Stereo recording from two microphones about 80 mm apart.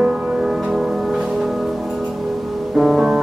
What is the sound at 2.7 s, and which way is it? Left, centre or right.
Music, centre.